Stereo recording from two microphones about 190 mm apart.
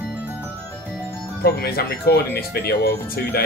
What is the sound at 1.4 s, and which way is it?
Speech, 55° left (ahead or behind).